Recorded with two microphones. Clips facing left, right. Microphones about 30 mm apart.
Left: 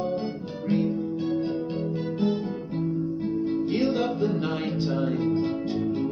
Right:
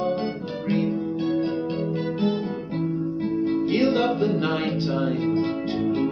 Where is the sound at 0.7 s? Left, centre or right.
Right.